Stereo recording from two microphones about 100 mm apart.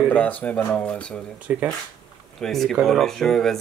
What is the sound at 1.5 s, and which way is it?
Speech, 20° right (ahead or behind).